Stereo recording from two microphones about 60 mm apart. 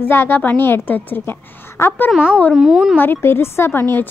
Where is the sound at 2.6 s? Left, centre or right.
Centre.